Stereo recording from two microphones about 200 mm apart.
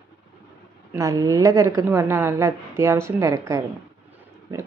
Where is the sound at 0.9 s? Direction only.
15° right (ahead or behind).